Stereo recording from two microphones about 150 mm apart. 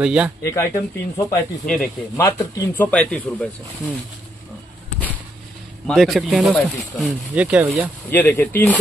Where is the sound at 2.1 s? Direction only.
20° left (ahead or behind).